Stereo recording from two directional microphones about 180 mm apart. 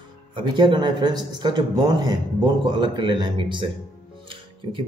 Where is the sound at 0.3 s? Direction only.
25° right (ahead or behind).